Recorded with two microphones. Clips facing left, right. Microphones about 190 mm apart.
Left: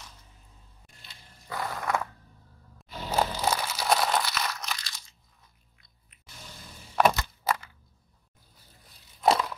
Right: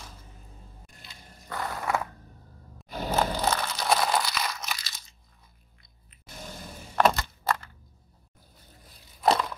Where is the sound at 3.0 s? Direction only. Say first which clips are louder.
Right 1 dB; 10° left (ahead or behind).